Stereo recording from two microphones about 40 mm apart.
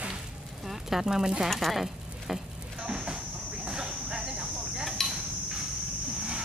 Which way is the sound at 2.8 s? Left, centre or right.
Right.